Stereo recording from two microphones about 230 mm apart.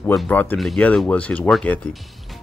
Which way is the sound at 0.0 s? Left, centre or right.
Centre.